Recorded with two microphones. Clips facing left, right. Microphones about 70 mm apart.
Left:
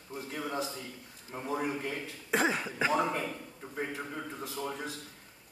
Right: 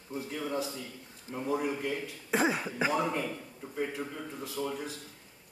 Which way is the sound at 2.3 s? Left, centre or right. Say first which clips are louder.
Right 1 dB; centre.